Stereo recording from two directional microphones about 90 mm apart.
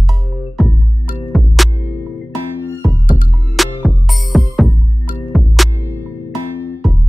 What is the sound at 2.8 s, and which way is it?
Music, centre (ahead or behind).